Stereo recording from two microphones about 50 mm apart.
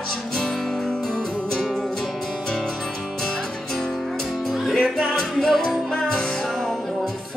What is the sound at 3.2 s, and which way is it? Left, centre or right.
Music, centre.